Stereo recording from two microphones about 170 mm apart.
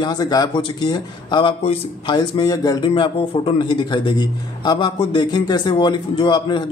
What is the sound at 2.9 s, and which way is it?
A man's voice, 30° left (ahead or behind).